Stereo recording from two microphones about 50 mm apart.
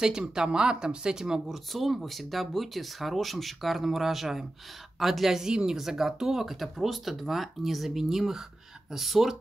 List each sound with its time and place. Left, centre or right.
0.3 s speech: centre
1.5 s speech: centre